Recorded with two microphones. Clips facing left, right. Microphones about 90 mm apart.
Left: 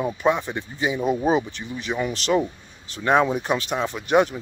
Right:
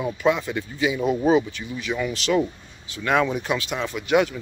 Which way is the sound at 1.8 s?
35° left (ahead or behind).